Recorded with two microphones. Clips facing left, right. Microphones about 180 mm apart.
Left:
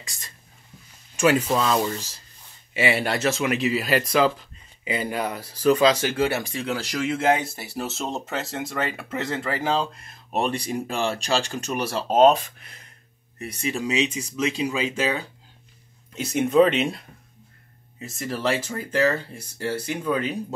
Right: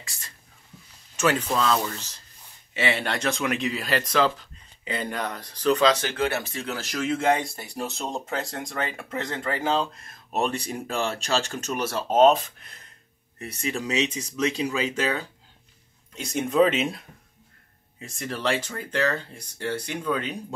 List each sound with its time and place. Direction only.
1.1 s speech: 10° left (ahead or behind)
14.5 s speech: 10° left (ahead or behind)